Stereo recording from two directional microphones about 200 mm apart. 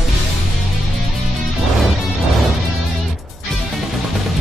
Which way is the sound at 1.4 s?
Centre (ahead or behind).